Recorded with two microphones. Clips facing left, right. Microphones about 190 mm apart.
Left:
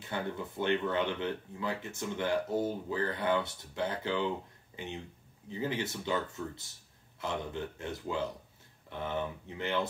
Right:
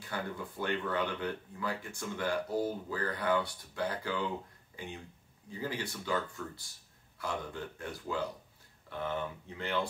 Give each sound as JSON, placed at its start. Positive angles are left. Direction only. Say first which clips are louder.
{"t": 0.0, "sound": "speech", "louder": "left 2 dB", "side_deg": 25}